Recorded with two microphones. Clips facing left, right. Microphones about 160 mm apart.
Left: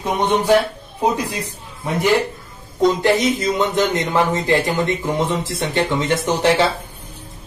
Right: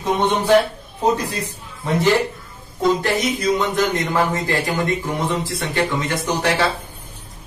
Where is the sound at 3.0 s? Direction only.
20° left (ahead or behind).